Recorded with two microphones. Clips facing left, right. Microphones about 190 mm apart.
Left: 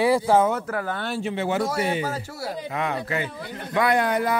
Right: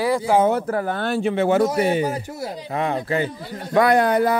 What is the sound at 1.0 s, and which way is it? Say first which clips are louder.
Speech: right 6 dB; 55° right (ahead or behind).